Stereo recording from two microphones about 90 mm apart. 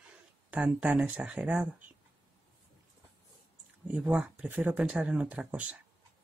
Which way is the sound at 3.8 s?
15° right (ahead or behind).